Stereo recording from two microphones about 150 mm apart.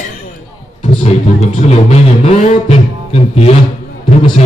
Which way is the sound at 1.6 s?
45° left (ahead or behind).